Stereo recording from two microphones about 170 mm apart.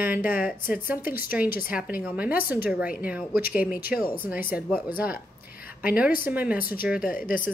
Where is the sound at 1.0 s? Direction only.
60° left (ahead or behind).